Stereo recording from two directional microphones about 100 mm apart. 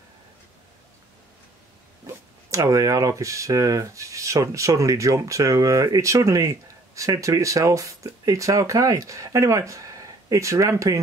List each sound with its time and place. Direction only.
2.0 s speech: 30° right (ahead or behind)